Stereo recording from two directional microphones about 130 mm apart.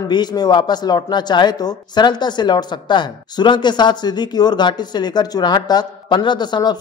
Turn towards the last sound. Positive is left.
turn(degrees=35)  # may be behind; listen again after turning